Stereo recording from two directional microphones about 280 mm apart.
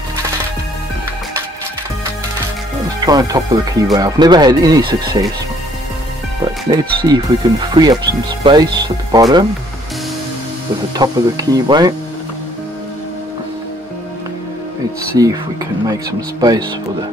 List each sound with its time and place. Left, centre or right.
3.1 s speech: centre
6.4 s speech: centre
11.0 s speech: centre
15.2 s speech: centre